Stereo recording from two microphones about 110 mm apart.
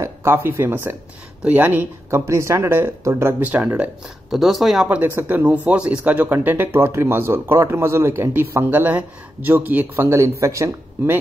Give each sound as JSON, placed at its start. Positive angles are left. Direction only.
{"t": 0.0, "sound": "speech", "side_deg": -25}
{"t": 4.3, "sound": "speech", "side_deg": 0}
{"t": 4.8, "sound": "speech", "side_deg": -15}